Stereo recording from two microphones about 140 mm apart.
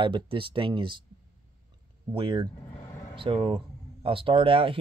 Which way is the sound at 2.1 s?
35° right (ahead or behind).